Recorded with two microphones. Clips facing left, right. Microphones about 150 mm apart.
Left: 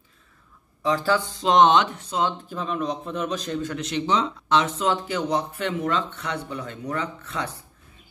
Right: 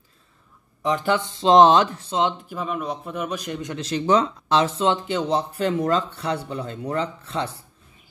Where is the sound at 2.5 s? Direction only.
5° right (ahead or behind).